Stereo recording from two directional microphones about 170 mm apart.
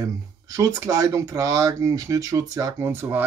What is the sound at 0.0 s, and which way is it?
Speech, 20° right (ahead or behind).